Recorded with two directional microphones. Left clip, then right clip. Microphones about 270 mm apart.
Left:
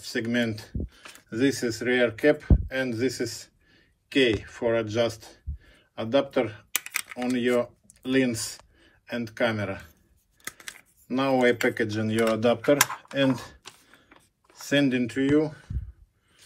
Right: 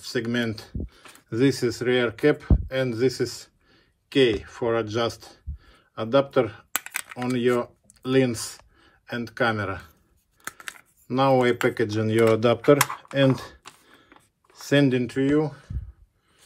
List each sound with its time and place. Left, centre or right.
0.0 s speech: centre
2.7 s a sound: centre
4.4 s speech: centre